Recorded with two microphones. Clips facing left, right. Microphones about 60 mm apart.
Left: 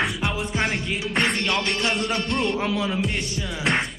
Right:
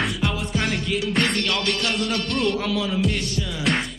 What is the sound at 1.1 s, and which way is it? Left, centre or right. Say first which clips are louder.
Music: left 1 dB; centre.